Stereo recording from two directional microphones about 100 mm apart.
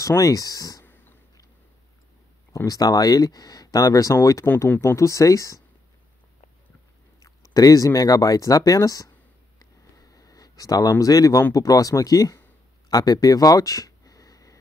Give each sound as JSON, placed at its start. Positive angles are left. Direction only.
{"t": 0.0, "sound": "speech", "side_deg": 35}
{"t": 2.5, "sound": "speech", "side_deg": 35}
{"t": 7.2, "sound": "speech", "side_deg": 35}
{"t": 10.1, "sound": "speech", "side_deg": 35}
{"t": 12.9, "sound": "a sound", "side_deg": 40}